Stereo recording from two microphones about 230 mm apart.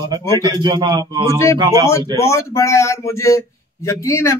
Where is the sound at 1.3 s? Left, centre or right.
Centre.